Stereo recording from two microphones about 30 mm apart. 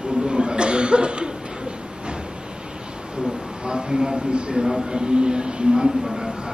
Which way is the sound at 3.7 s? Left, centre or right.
Right.